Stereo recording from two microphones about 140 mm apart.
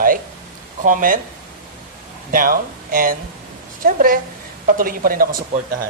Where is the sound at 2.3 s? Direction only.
90° right.